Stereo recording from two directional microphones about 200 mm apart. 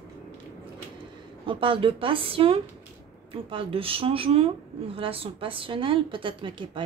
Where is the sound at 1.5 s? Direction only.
25° right (ahead or behind).